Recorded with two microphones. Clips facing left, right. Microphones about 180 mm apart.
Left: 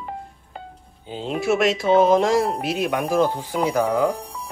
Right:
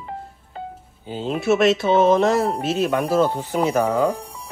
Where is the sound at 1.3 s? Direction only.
Centre (ahead or behind).